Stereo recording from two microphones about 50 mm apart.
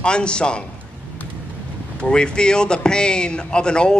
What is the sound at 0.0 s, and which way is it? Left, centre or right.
Speech, centre.